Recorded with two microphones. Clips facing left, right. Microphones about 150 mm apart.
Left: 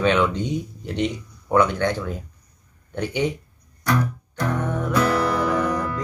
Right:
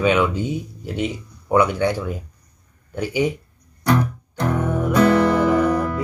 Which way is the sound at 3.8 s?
25° right (ahead or behind).